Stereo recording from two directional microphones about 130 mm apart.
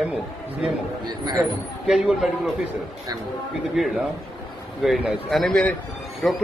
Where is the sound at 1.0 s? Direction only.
30° right (ahead or behind).